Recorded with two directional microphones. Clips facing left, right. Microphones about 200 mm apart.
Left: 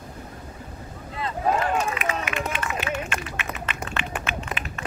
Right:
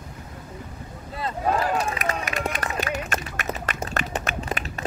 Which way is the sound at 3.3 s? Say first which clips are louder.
Right 2 dB; 40° right (ahead or behind).